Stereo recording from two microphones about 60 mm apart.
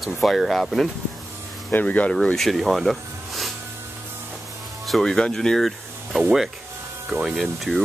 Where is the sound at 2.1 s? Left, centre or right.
Centre.